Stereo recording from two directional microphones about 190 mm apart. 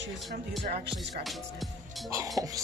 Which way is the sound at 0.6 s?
55° right (ahead or behind).